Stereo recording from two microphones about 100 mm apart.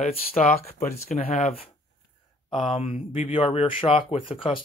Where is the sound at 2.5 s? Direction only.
55° left (ahead or behind).